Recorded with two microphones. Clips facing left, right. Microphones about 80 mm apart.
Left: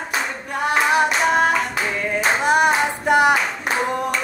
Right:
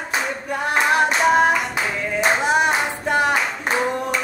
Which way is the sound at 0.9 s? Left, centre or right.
Centre.